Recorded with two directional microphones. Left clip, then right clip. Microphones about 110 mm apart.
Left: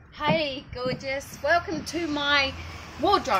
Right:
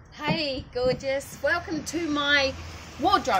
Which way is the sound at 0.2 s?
35° right (ahead or behind).